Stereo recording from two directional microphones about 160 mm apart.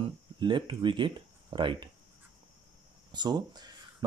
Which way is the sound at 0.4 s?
30° right (ahead or behind).